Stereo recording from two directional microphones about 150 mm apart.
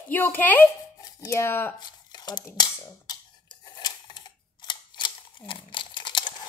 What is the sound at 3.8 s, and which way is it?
Camera, 30° left (ahead or behind).